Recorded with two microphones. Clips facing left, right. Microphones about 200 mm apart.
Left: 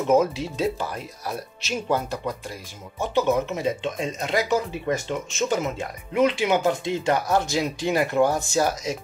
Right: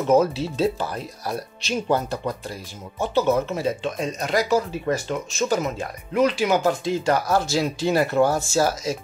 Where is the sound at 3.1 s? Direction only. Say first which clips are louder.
Right 1 dB; 15° left (ahead or behind).